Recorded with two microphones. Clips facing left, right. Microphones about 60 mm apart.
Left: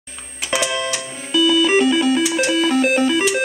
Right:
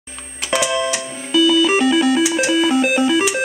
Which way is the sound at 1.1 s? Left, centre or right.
Centre.